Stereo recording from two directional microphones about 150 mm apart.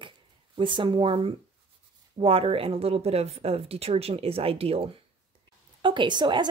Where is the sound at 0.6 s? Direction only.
30° right (ahead or behind).